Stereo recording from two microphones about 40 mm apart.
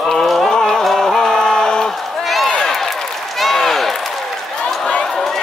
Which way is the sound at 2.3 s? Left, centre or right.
Centre.